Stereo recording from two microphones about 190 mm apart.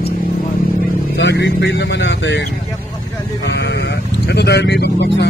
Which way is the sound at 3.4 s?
65° left (ahead or behind).